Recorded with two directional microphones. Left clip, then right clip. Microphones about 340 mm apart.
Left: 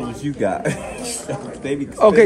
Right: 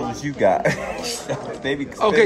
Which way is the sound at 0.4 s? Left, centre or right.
Right.